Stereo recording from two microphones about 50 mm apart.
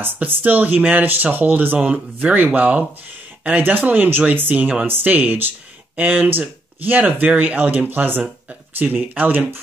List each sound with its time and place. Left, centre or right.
0.2 s speech: right